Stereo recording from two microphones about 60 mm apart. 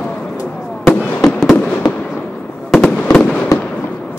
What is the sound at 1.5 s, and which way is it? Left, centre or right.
Fireworks, left.